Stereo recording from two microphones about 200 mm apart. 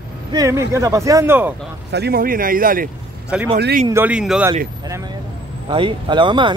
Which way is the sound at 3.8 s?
10° right (ahead or behind).